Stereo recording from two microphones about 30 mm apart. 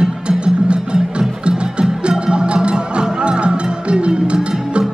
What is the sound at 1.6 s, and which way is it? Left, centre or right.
Music, right.